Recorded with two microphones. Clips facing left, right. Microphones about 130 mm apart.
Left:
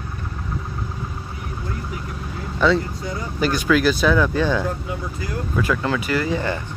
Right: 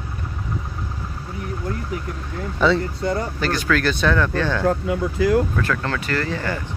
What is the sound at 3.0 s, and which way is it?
Speech, 60° right (ahead or behind).